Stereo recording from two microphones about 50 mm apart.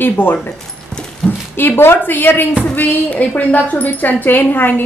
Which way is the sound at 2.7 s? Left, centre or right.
Left.